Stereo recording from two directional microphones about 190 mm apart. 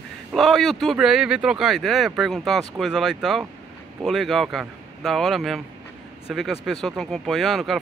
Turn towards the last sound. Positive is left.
turn(degrees=0)  # may be behind; listen again after turning